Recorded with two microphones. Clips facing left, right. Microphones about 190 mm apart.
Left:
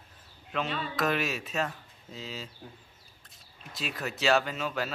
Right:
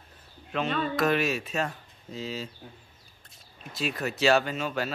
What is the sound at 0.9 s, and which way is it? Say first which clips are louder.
Speech: right 3 dB; centre (ahead or behind).